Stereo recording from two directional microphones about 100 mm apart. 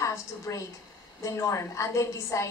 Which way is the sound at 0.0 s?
30° left (ahead or behind).